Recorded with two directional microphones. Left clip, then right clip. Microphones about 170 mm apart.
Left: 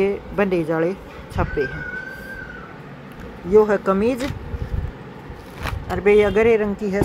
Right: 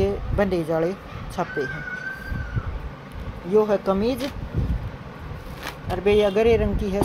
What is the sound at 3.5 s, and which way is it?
Speech, 20° left (ahead or behind).